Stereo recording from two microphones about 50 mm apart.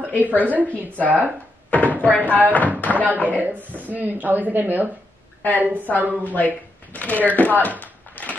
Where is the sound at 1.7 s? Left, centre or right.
Left.